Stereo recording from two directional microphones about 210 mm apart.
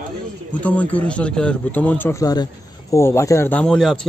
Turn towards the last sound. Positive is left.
turn(degrees=5)  # may be behind; listen again after turning